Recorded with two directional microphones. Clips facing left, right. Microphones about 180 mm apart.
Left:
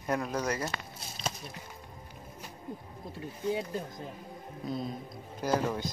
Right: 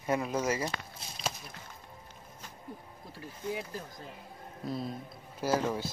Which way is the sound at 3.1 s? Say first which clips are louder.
Left 5 dB; 25° left (ahead or behind).